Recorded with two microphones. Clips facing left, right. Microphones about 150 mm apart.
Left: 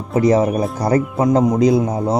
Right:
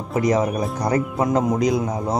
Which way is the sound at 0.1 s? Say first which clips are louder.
Left 5 dB; 30° left (ahead or behind).